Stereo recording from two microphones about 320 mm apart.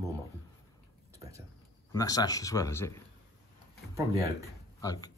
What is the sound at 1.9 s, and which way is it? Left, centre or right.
Speech, centre.